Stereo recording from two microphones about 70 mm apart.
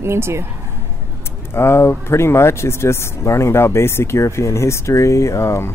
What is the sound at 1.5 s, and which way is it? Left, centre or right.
Speech, left.